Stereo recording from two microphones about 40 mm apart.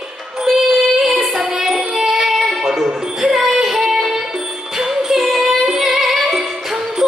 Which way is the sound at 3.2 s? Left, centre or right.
Centre.